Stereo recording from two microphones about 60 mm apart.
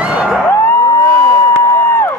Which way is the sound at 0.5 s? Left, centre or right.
Left.